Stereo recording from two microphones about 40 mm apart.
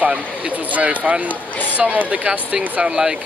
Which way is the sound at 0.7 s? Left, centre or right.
Right.